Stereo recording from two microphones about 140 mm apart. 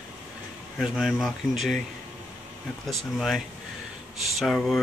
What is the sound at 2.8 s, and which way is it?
Speech, centre (ahead or behind).